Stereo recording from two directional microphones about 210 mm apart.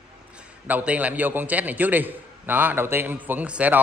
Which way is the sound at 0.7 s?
5° right (ahead or behind).